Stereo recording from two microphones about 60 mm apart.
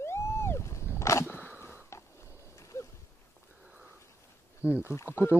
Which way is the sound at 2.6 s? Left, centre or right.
Left.